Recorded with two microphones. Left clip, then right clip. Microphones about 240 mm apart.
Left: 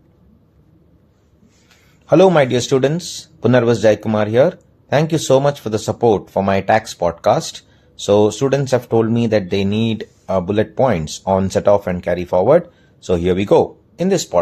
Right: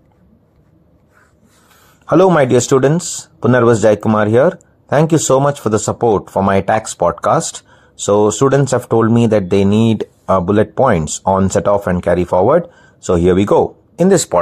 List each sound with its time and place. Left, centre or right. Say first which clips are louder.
2.0 s speech: right 1 dB; right